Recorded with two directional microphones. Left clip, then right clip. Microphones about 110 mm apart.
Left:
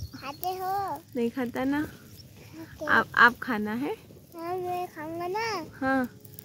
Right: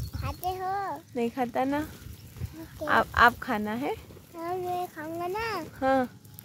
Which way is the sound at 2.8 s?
5° right (ahead or behind).